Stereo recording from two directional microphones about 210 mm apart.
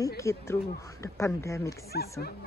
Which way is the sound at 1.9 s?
50° left (ahead or behind).